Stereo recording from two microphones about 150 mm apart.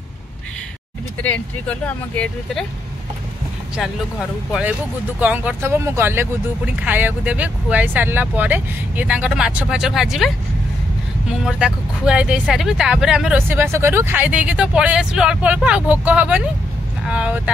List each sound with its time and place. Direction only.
1.2 s speech: 10° left (ahead or behind)
4.5 s speech: 5° right (ahead or behind)